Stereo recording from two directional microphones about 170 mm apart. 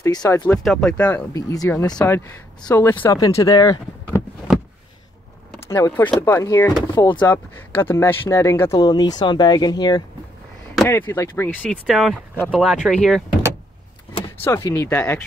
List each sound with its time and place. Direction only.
0.0 s speech: 20° left (ahead or behind)
0.7 s speech: 5° left (ahead or behind)
1.3 s speech: 20° left (ahead or behind)
5.7 s speech: 15° left (ahead or behind)
7.0 s speech: 25° left (ahead or behind)
7.2 s speech: 10° left (ahead or behind)
10.9 s speech: 15° left (ahead or behind)
11.8 s speech: centre (ahead or behind)
14.4 s speech: 20° left (ahead or behind)